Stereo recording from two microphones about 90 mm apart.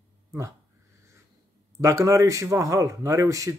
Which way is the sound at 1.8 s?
35° right (ahead or behind).